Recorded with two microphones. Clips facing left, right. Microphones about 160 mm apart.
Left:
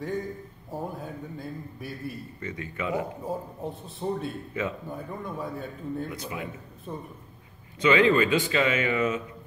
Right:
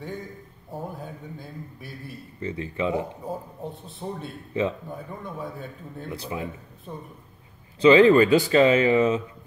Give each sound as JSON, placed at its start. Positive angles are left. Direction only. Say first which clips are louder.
{"t": 0.7, "sound": "a man's voice", "louder": "left 1 dB", "side_deg": 0}
{"t": 2.4, "sound": "speech", "louder": "right 6 dB", "side_deg": -30}
{"t": 3.3, "sound": "a man's voice", "louder": "left 1 dB", "side_deg": 0}
{"t": 4.6, "sound": "speech", "louder": "right 6 dB", "side_deg": -30}
{"t": 4.9, "sound": "a man's voice", "louder": "left 1 dB", "side_deg": 0}
{"t": 6.0, "sound": "speech", "louder": "right 3 dB", "side_deg": -30}
{"t": 6.9, "sound": "a man's voice", "louder": "left 1 dB", "side_deg": 0}
{"t": 7.8, "sound": "speech", "louder": "right 6 dB", "side_deg": -35}